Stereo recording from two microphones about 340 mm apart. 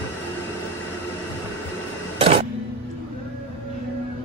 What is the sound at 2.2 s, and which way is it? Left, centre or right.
Printer, centre.